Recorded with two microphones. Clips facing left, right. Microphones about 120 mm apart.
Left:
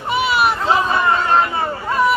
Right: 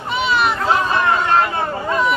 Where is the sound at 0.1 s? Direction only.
10° left (ahead or behind).